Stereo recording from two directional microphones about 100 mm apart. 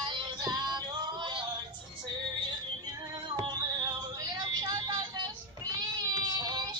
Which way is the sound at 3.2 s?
45° right (ahead or behind).